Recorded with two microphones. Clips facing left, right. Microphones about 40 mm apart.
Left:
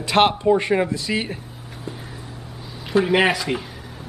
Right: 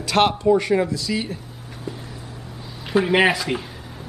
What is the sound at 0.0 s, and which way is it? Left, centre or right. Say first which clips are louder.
Speech: left 1 dB; left.